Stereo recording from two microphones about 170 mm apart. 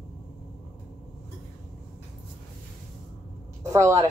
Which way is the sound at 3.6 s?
15° right (ahead or behind).